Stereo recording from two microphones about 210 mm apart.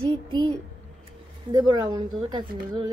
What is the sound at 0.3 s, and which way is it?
A woman's voice, 20° right (ahead or behind).